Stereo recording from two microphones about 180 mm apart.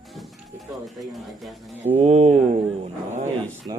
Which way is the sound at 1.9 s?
35° right (ahead or behind).